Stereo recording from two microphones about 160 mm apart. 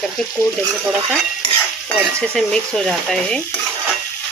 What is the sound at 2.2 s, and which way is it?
Speech, 5° left (ahead or behind).